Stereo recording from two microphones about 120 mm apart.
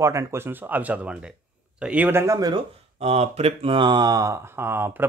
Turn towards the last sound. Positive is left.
turn(degrees=-20)  # may be behind; listen again after turning